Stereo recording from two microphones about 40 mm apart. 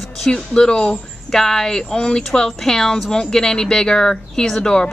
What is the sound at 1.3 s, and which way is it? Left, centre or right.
Speech, centre.